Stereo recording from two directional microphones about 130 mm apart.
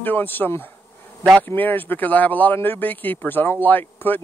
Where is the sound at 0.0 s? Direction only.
15° left (ahead or behind).